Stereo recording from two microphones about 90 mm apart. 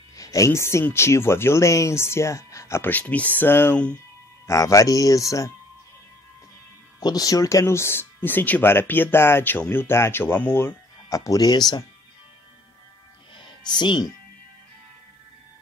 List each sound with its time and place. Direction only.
0.1 s speech: 40° left (ahead or behind)
2.9 s speech: 15° left (ahead or behind)
4.5 s speech: 35° left (ahead or behind)
7.0 s speech: 45° left (ahead or behind); by 10.7 s 25° left (ahead or behind)
11.1 s speech: 40° left (ahead or behind)
13.4 s music: 60° left (ahead or behind)